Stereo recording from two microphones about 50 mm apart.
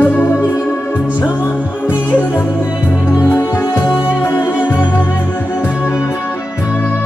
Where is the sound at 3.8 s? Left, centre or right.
Right.